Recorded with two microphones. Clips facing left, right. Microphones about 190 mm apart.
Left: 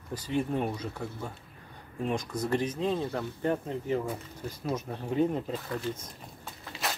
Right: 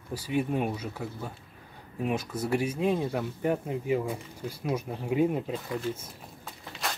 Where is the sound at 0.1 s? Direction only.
10° right (ahead or behind).